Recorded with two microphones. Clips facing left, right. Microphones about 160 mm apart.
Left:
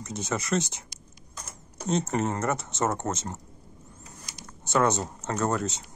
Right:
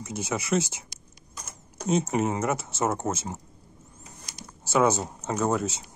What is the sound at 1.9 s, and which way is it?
Speech, 5° right (ahead or behind).